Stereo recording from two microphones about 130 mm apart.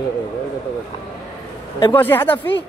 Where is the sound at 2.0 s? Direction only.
15° left (ahead or behind).